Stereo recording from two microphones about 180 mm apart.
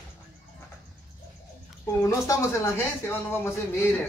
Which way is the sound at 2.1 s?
15° left (ahead or behind).